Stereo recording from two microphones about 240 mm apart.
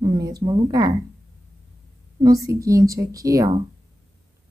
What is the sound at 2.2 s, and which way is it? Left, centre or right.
Speech, centre.